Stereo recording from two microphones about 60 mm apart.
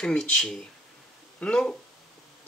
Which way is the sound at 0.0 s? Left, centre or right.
Centre.